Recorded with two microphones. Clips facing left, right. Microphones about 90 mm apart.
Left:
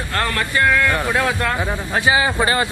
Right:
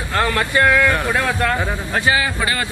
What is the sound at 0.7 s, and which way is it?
Speech, 5° right (ahead or behind).